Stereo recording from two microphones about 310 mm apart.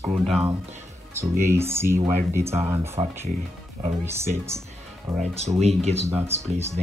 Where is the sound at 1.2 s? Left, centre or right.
Centre.